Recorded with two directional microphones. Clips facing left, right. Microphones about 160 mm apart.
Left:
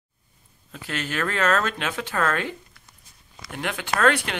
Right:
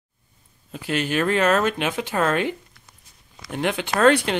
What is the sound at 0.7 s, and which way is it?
Speech, 15° right (ahead or behind).